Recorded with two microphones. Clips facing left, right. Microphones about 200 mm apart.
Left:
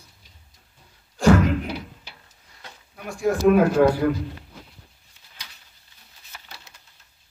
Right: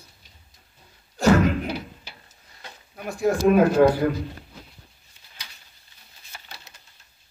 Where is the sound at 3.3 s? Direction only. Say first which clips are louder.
Even; 35° right (ahead or behind).